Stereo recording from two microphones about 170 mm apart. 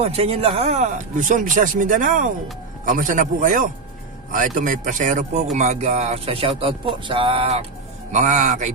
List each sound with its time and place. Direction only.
0.0 s speech: 35° right (ahead or behind)
8.1 s speech: 45° right (ahead or behind)